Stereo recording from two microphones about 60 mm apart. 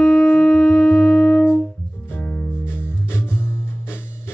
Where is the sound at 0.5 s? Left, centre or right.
Centre.